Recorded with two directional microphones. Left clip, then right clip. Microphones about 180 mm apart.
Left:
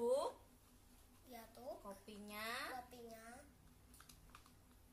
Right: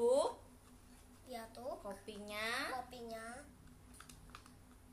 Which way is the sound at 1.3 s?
5° left (ahead or behind).